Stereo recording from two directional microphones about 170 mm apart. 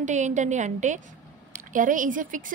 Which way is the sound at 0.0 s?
45° right (ahead or behind).